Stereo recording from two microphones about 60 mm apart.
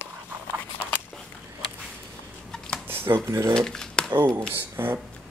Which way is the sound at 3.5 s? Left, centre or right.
Centre.